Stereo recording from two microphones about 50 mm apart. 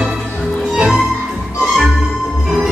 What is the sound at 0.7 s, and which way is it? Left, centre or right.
Music, centre.